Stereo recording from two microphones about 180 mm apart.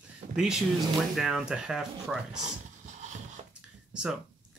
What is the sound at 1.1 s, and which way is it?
Speech, centre (ahead or behind).